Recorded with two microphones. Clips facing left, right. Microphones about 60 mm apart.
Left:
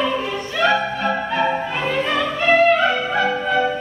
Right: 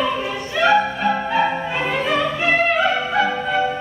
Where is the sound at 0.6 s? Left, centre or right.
Centre.